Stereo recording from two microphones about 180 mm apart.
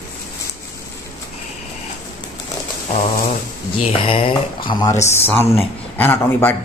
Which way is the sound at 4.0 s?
30° left (ahead or behind).